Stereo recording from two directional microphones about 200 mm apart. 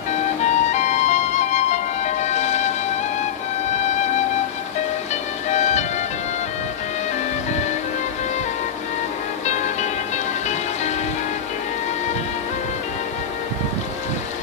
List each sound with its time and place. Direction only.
0.4 s music: 35° left (ahead or behind)
5.5 s music: 35° left (ahead or behind)